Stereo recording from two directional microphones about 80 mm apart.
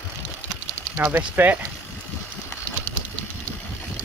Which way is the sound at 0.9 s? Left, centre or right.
Right.